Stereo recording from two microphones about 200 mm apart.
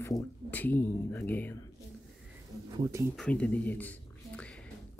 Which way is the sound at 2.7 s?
15° right (ahead or behind).